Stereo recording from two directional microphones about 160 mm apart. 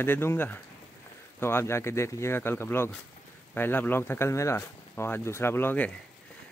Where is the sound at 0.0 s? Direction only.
15° left (ahead or behind).